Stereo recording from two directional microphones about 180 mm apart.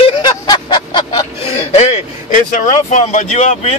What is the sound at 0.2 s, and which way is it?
Vehicle, 25° left (ahead or behind).